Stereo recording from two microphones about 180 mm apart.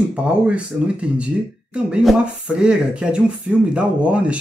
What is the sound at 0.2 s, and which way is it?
Speech, 5° right (ahead or behind).